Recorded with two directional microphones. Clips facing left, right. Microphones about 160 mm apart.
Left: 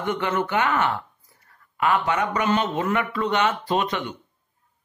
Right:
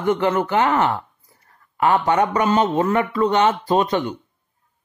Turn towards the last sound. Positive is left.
turn(degrees=-40)  # may be behind; listen again after turning